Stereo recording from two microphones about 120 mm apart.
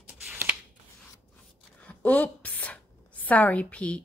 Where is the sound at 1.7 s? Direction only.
10° left (ahead or behind).